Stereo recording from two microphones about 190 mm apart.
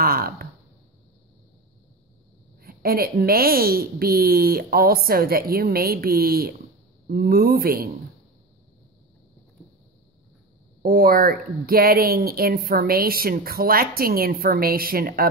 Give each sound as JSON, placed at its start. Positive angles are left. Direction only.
{"t": 0.0, "sound": "a sound", "side_deg": -50}
{"t": 2.6, "sound": "speech", "side_deg": -50}
{"t": 10.8, "sound": "speech", "side_deg": -50}